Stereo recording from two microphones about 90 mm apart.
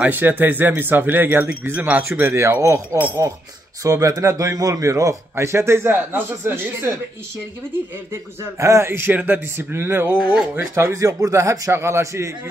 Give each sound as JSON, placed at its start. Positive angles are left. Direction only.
{"t": 0.0, "sound": "speech", "side_deg": -20}
{"t": 2.3, "sound": "speech", "side_deg": -30}
{"t": 8.1, "sound": "speech", "side_deg": -35}